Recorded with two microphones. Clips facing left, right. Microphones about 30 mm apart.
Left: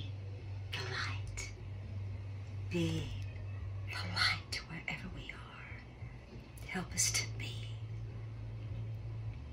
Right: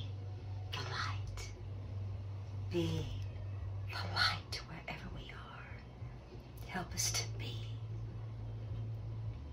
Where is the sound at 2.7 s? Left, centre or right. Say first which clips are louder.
Left 1 dB; left.